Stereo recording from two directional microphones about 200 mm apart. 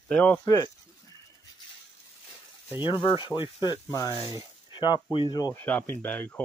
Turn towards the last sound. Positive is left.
turn(degrees=5)  # may be behind; listen again after turning